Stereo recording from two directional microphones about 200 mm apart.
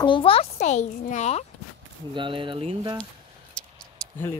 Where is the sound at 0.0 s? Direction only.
25° left (ahead or behind).